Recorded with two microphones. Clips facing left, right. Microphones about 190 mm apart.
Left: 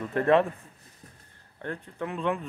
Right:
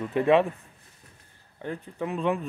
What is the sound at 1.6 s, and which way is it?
Speech, 5° right (ahead or behind).